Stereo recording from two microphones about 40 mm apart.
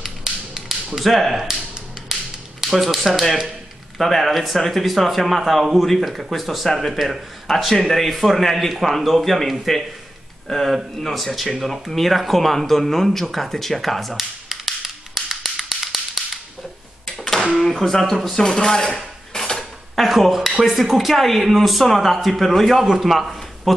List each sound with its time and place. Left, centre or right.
0.0 s tap: centre
0.9 s speech: centre
2.0 s a sound: centre
2.6 s speech: centre
14.1 s tap: centre
17.0 s a sound: centre
17.4 s speech: centre
18.4 s speech: centre
18.9 s dishes: centre
20.0 s speech: centre
23.0 s a sound: centre